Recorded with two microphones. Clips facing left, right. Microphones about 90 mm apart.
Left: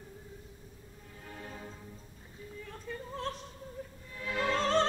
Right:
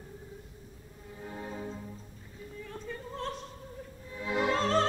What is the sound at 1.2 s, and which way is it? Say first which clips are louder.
Music: right 6 dB; 20° right (ahead or behind).